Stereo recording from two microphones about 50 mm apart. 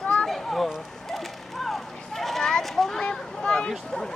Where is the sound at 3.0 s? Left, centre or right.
Centre.